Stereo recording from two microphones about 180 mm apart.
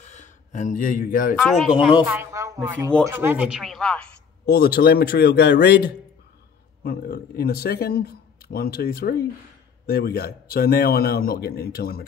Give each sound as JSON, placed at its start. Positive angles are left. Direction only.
{"t": 0.0, "sound": "a sound", "side_deg": 40}
{"t": 1.3, "sound": "speech", "side_deg": 0}
{"t": 2.0, "sound": "a woman's voice", "side_deg": -15}
{"t": 4.5, "sound": "a man's voice", "side_deg": 60}
{"t": 6.8, "sound": "a man's voice", "side_deg": 55}